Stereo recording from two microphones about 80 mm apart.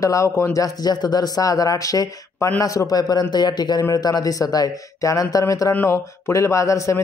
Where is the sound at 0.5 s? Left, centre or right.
Left.